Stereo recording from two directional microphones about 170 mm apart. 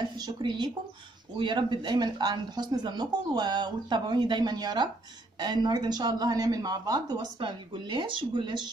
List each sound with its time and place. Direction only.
0.2 s speech: 25° right (ahead or behind)